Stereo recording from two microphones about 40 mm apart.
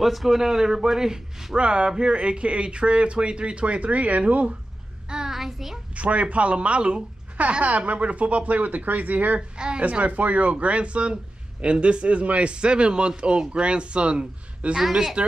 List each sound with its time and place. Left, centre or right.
0.0 s a man's voice: centre; by 4.6 s right
5.1 s child singing: centre
5.9 s speech: right
9.6 s speech: right
9.8 s a man's voice: right